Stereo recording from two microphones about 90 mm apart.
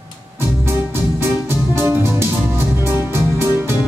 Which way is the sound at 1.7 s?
25° right (ahead or behind).